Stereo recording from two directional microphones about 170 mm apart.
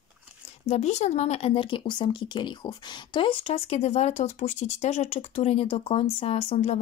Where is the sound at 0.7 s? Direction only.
40° left (ahead or behind).